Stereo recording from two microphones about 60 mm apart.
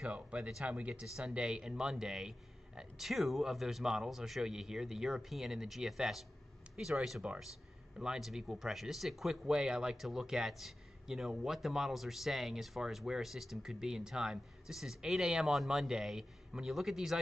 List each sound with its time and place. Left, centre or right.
0.0 s a man's voice: centre
9.5 s a man's voice: centre